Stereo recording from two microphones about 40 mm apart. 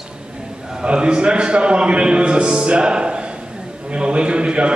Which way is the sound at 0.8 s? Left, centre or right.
Right.